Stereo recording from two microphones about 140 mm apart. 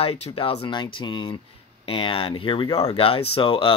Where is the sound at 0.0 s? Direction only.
45° left (ahead or behind).